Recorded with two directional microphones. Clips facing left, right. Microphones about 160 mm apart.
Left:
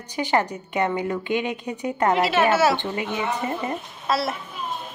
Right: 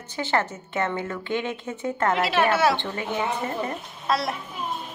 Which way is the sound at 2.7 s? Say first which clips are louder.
Left 2 dB; 15° left (ahead or behind).